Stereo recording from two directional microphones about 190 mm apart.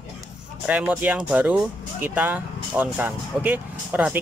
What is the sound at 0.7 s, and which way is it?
Speech, 10° right (ahead or behind).